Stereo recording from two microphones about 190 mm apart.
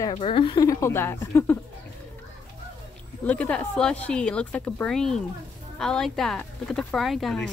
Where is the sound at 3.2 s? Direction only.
5° left (ahead or behind).